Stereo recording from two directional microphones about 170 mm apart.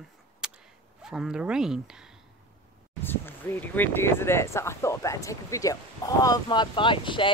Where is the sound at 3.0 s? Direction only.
10° left (ahead or behind).